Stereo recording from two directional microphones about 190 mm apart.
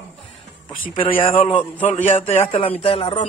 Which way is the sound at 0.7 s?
25° left (ahead or behind).